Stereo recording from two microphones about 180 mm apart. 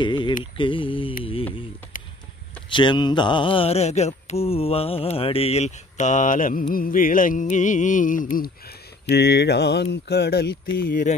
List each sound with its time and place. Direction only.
0.0 s a sound: 25° left (ahead or behind)
0.4 s speech: 30° left (ahead or behind)
2.7 s mantra: 25° left (ahead or behind); by 6.6 s 45° left (ahead or behind)
6.7 s music: 50° left (ahead or behind)
9.1 s mantra: 65° left (ahead or behind)
10.0 s speech: 65° left (ahead or behind)
10.9 s music: 45° left (ahead or behind)